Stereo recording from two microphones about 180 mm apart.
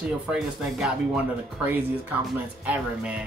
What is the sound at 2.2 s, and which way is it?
Speech, 5° right (ahead or behind).